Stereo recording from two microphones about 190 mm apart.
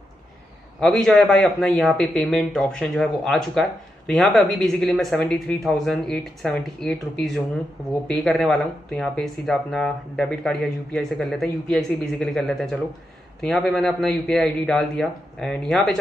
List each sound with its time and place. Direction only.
0.7 s speech: centre (ahead or behind)